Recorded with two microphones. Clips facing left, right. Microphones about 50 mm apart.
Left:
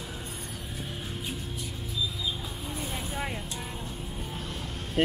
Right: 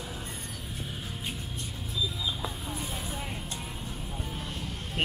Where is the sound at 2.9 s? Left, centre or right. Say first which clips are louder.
Left 3 dB; left.